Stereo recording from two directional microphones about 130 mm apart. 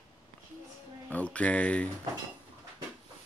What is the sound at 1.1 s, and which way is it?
Speech, 10° left (ahead or behind).